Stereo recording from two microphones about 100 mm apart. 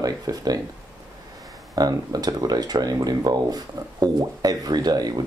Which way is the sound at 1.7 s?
40° right (ahead or behind).